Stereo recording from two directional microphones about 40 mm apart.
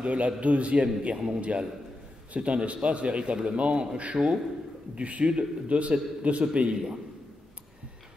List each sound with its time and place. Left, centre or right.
0.0 s a man's voice: right
1.1 s speech: centre
1.4 s a man's voice: right